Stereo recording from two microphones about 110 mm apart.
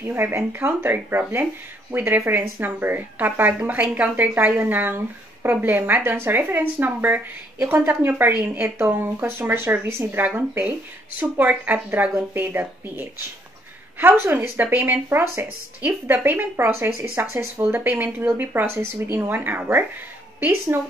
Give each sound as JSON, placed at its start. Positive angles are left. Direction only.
{"t": 0.0, "sound": "speech", "side_deg": -20}